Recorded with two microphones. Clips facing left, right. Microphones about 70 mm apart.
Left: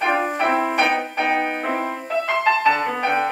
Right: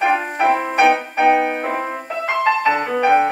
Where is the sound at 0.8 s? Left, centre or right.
Centre.